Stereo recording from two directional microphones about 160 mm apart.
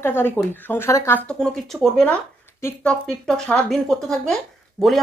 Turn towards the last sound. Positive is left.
turn(degrees=0)  # may be behind; listen again after turning